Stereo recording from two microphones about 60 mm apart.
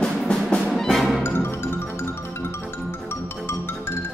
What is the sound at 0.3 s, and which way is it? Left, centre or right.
Music, centre.